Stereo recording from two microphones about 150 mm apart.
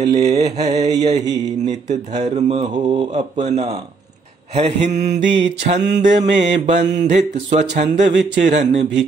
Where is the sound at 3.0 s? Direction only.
45° right (ahead or behind).